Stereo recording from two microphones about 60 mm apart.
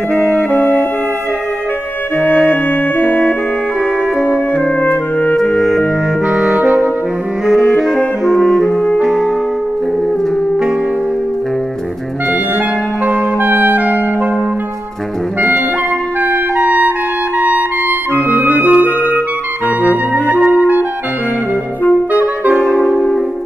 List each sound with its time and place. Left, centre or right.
0.3 s brass instrument: left
2.2 s brass instrument: left
4.8 s music: left
6.2 s clarinet: centre
7.7 s clarinet: centre
13.0 s music: right
16.6 s music: right
18.1 s clarinet: right
18.6 s music: right
18.9 s clarinet: left
22.5 s music: centre
22.8 s music: centre